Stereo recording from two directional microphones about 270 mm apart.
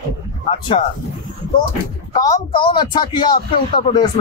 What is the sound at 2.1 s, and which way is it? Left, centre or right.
A man's voice, centre.